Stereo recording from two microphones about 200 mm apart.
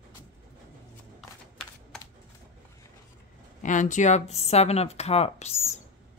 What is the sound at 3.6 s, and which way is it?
Speech, 40° left (ahead or behind).